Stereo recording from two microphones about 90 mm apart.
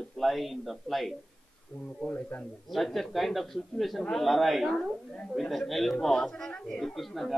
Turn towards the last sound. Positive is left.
turn(degrees=0)  # may be behind; listen again after turning